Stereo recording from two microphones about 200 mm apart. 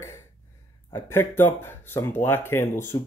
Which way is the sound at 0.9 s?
10° left (ahead or behind).